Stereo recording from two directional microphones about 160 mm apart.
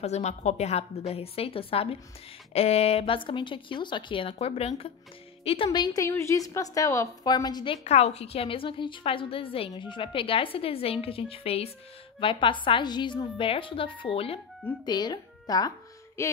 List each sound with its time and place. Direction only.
0.0 s a woman's voice: 45° left (ahead or behind); by 7.7 s 25° left (ahead or behind)
7.8 s a woman's voice: 45° left (ahead or behind); by 15.7 s 25° left (ahead or behind)
16.2 s a sound: 15° left (ahead or behind)